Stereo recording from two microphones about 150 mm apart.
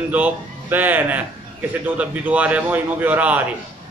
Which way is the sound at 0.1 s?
10° right (ahead or behind).